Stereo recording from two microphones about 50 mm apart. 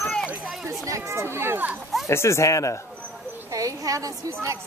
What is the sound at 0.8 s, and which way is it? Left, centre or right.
Speech, right.